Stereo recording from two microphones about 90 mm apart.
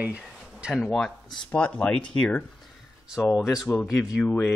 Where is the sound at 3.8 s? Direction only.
5° left (ahead or behind).